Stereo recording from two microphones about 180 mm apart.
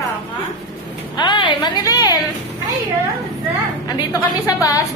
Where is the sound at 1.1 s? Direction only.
25° left (ahead or behind).